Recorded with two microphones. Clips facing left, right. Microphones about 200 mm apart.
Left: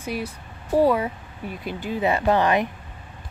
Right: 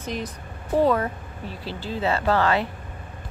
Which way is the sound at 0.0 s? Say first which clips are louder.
Left 1 dB; 10° left (ahead or behind).